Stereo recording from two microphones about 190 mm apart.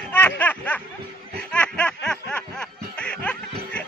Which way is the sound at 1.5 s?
5° left (ahead or behind).